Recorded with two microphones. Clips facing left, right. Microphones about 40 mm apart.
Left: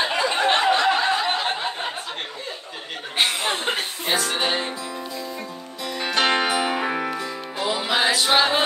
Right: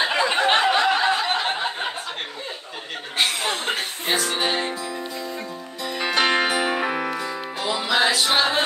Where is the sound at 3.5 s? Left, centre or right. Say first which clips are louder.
Left 1 dB; centre.